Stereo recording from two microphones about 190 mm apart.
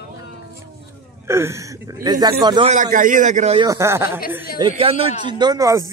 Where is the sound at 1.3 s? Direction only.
15° right (ahead or behind).